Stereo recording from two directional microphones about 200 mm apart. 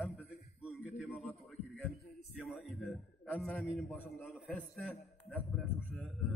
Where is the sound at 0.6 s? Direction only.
Centre (ahead or behind).